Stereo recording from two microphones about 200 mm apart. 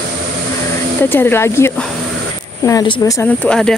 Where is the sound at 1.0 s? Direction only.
10° left (ahead or behind).